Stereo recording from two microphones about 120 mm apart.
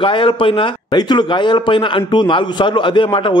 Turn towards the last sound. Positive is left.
turn(degrees=45)  # may be behind; listen again after turning